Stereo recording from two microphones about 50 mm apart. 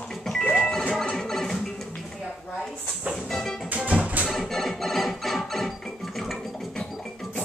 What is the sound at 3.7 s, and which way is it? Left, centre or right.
Music, right.